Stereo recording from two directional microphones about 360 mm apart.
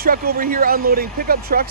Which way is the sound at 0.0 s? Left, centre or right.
Right.